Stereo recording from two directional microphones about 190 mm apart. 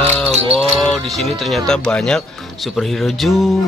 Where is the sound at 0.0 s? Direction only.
10° left (ahead or behind).